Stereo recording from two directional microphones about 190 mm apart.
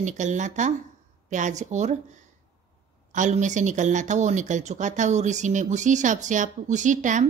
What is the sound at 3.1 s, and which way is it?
Speech, 40° right (ahead or behind).